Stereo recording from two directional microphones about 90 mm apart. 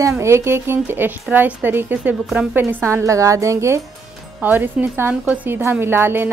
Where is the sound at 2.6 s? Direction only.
25° right (ahead or behind).